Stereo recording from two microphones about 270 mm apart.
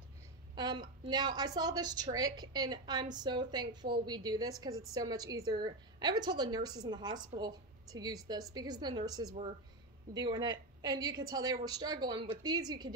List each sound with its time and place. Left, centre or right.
0.6 s a woman's voice: centre